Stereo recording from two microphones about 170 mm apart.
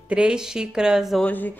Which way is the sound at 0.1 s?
5° right (ahead or behind).